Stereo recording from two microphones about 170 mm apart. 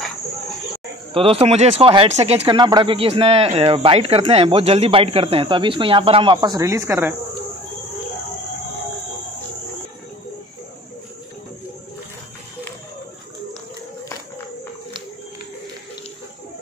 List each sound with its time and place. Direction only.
1.1 s speech: 35° right (ahead or behind); by 7.2 s 15° right (ahead or behind)